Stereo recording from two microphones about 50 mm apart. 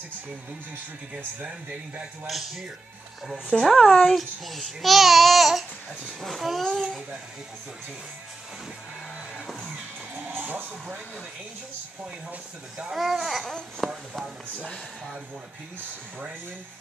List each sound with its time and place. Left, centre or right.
1.4 s speech: right
2.2 s speech: centre
3.8 s speech: centre
10.4 s a sound: right
12.9 s speech: centre